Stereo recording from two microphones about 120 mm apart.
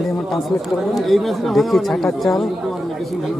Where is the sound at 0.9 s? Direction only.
Centre (ahead or behind).